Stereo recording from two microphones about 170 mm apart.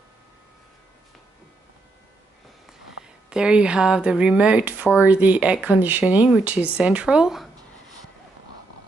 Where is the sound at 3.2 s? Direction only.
5° right (ahead or behind).